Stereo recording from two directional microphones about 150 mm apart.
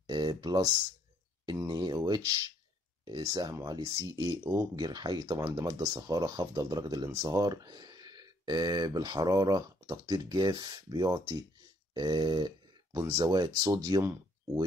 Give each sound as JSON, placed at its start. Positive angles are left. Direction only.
{"t": 0.0, "sound": "speech", "side_deg": -25}
{"t": 11.9, "sound": "a sound", "side_deg": -25}
{"t": 13.2, "sound": "speech", "side_deg": -25}